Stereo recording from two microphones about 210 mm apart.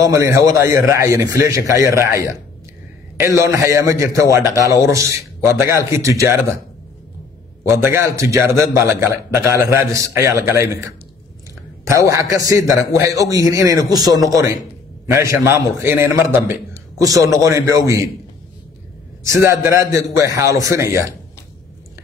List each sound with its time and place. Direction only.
0.0 s a man's voice: 15° right (ahead or behind)
7.6 s a man's voice: 15° right (ahead or behind)
12.1 s a man's voice: 15° right (ahead or behind)
19.2 s a man's voice: 15° right (ahead or behind)